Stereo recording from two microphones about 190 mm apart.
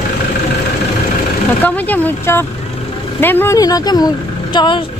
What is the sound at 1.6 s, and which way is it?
Speech, 10° left (ahead or behind).